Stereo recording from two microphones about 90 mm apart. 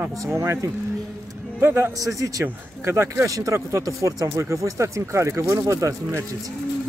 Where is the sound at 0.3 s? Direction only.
30° right (ahead or behind).